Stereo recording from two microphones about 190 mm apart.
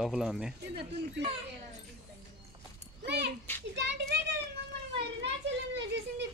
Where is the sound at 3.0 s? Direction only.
60° right (ahead or behind).